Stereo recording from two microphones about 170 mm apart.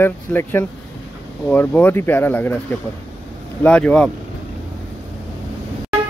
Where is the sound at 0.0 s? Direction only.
10° left (ahead or behind).